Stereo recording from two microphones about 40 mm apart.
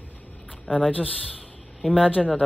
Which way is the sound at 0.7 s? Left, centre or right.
Right.